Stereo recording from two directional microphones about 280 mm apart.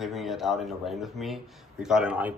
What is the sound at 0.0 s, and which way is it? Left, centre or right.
Speech, centre.